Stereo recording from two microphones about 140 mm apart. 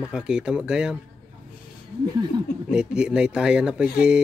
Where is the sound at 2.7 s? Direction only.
5° right (ahead or behind).